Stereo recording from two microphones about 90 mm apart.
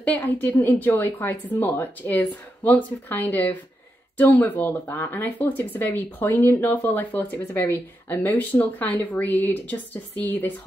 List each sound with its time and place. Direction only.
0.0 s a woman's voice: 20° left (ahead or behind)